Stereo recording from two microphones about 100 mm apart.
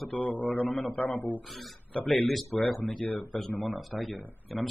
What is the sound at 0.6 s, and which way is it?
A man's voice, centre (ahead or behind).